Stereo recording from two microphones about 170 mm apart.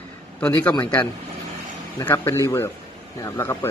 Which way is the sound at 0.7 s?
25° left (ahead or behind).